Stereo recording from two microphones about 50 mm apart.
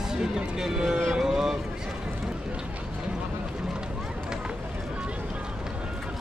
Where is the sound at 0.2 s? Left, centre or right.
Centre.